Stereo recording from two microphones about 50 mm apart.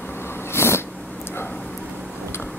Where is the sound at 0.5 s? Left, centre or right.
Left.